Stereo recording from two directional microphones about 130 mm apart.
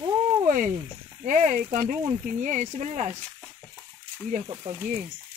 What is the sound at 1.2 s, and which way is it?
Speech, 80° right.